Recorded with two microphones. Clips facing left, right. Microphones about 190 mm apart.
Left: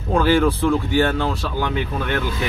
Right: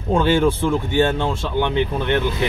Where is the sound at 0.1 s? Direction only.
25° right (ahead or behind).